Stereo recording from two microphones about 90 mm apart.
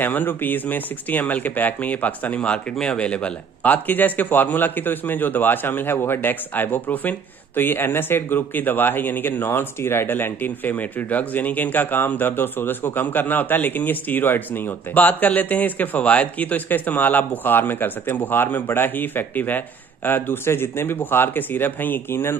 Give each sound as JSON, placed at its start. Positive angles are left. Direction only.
{"t": 0.0, "sound": "speech", "side_deg": 20}